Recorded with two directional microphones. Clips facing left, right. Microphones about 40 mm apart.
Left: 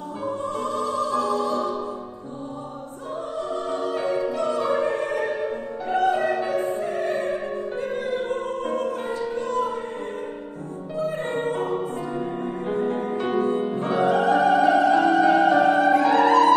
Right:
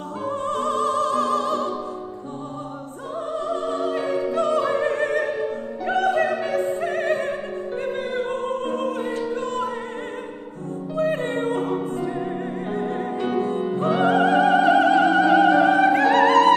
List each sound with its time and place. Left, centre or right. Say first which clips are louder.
0.5 s opera: right 6 dB; right
3.8 s opera: left 1 dB; right
5.9 s opera: right 1 dB; right
8.6 s music: right 1 dB; right
11.0 s music: right 3 dB; right
13.7 s opera: right 4 dB; right